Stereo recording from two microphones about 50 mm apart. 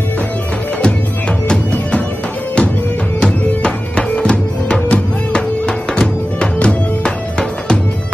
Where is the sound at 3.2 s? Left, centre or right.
Centre.